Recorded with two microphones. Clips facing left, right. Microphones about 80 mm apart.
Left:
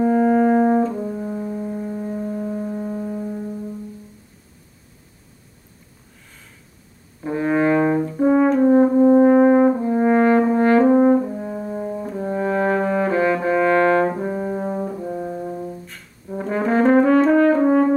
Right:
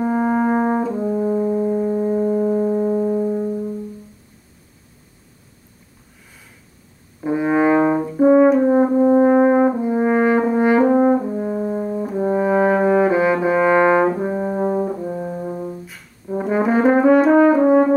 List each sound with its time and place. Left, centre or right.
0.0 s brass instrument: centre
1.0 s foghorn: right
7.2 s brass instrument: centre